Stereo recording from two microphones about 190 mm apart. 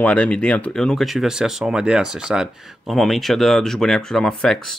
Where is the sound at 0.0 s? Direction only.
5° left (ahead or behind).